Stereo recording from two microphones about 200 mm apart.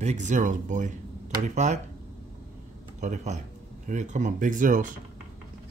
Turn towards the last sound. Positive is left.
turn(degrees=-40)  # may be behind; listen again after turning